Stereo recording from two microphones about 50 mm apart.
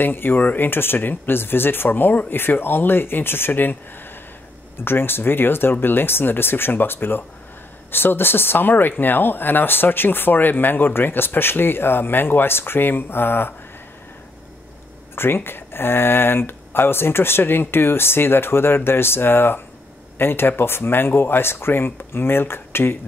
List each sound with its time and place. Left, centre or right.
0.0 s speech: left
0.7 s speech: left
4.8 s speech: left
15.1 s speech: left